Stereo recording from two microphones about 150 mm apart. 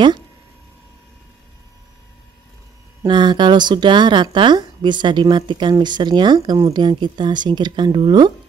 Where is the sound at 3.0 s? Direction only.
30° right (ahead or behind).